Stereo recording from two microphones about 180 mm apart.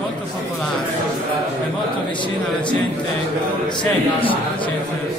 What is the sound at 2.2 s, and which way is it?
A man's voice, 25° left (ahead or behind).